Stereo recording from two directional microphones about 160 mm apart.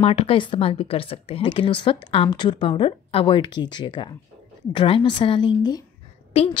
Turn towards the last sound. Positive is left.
turn(degrees=40)  # may be behind; listen again after turning